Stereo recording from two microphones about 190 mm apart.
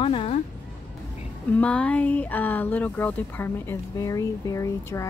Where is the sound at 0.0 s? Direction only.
30° left (ahead or behind).